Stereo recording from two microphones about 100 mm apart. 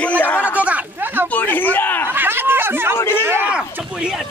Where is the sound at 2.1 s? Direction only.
20° right (ahead or behind).